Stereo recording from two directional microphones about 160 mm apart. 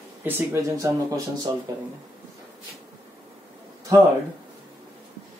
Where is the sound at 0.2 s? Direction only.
15° right (ahead or behind).